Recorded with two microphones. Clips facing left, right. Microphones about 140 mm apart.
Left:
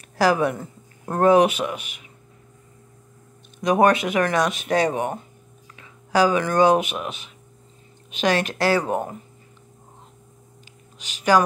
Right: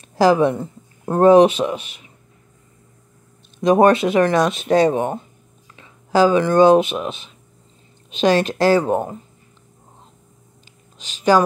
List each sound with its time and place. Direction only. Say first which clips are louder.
0.2 s speech: right 5 dB; 25° right (ahead or behind)
3.5 s speech: right 4 dB; 25° right (ahead or behind)
11.1 s speech: right 3 dB; 25° right (ahead or behind)